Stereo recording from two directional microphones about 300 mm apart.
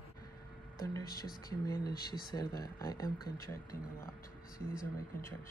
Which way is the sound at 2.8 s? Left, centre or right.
Centre.